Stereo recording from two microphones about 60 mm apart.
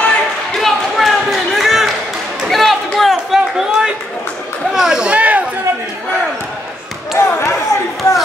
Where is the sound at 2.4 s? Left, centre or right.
Centre.